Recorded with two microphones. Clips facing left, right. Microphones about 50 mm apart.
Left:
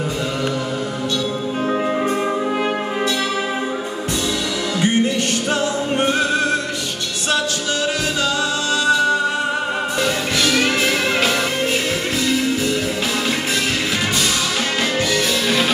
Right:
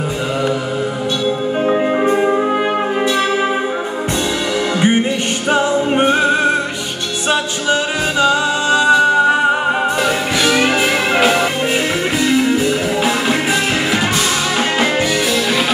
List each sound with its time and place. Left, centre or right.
1.7 s music: right
4.7 s music: right
8.2 s music: right
12.2 s music: right